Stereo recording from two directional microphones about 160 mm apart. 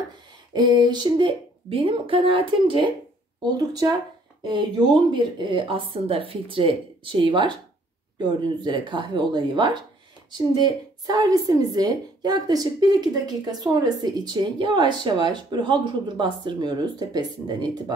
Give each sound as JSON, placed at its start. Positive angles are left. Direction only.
{"t": 0.5, "sound": "speech", "side_deg": -25}
{"t": 3.5, "sound": "a woman's voice", "side_deg": -25}